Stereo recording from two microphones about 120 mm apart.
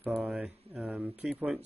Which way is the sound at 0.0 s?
5° right (ahead or behind).